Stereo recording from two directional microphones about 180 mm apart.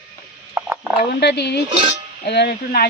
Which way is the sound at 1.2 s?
65° left (ahead or behind).